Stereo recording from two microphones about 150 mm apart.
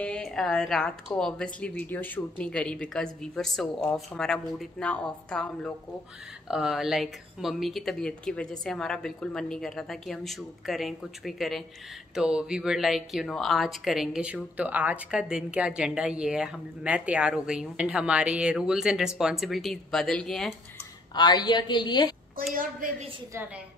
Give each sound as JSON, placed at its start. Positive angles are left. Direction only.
{"t": 0.0, "sound": "speech", "side_deg": 5}
{"t": 21.1, "sound": "a woman's voice", "side_deg": 30}
{"t": 22.5, "sound": "a woman's voice", "side_deg": -65}